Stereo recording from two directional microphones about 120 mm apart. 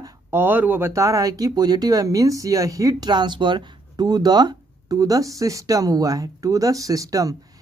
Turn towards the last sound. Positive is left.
turn(degrees=-30)  # may be behind; listen again after turning